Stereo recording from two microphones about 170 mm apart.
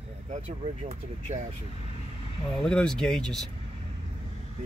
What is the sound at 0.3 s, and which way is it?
Speech, 40° right (ahead or behind).